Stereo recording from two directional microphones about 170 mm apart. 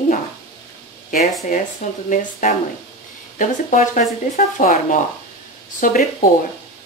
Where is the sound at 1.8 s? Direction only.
45° left (ahead or behind).